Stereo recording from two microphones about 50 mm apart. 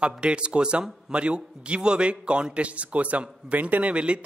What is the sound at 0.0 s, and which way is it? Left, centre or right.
A man's voice, right.